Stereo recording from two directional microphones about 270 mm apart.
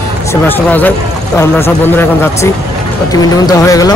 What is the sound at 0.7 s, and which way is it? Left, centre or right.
Speech, centre.